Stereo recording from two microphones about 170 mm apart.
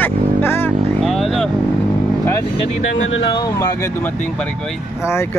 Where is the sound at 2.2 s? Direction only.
15° left (ahead or behind).